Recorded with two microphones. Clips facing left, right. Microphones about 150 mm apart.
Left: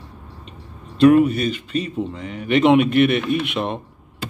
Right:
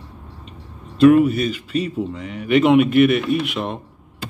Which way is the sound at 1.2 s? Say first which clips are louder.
Right 1 dB; 5° right (ahead or behind).